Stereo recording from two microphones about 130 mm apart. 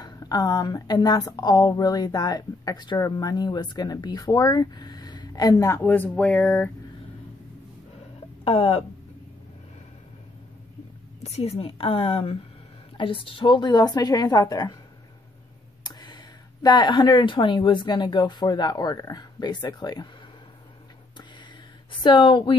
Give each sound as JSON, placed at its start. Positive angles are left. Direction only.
{"t": 0.0, "sound": "speech", "side_deg": 30}
{"t": 8.5, "sound": "a woman's voice", "side_deg": 50}
{"t": 11.2, "sound": "a woman's voice", "side_deg": 55}
{"t": 15.8, "sound": "a sound", "side_deg": 35}
{"t": 16.6, "sound": "speech", "side_deg": 35}
{"t": 22.0, "sound": "speech", "side_deg": 40}